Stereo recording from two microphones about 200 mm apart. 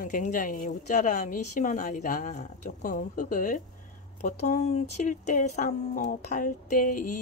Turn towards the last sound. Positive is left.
turn(degrees=45)  # may be behind; listen again after turning